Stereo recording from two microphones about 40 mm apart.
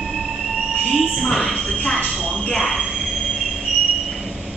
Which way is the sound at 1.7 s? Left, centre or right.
Left.